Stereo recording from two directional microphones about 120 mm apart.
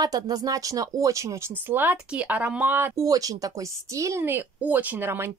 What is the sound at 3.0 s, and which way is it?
A woman's voice, 30° right (ahead or behind).